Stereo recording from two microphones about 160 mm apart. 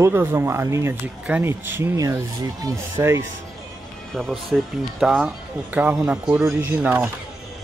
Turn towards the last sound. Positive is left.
turn(degrees=-10)  # may be behind; listen again after turning